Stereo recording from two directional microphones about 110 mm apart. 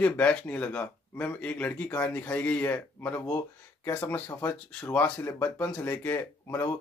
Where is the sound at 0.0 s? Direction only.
10° left (ahead or behind).